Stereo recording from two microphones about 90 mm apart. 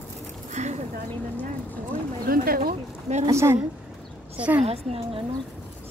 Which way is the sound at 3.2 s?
30° right (ahead or behind).